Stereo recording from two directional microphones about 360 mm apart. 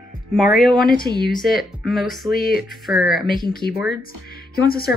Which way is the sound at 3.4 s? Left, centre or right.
Left.